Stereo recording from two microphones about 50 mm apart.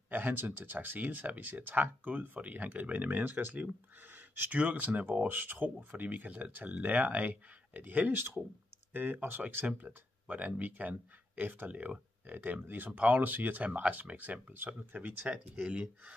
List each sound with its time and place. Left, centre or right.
0.1 s speech: right
4.5 s speech: right
15.2 s speech: right